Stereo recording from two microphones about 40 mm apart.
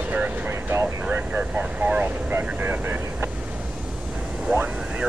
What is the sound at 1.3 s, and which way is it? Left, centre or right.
Vehicle, right.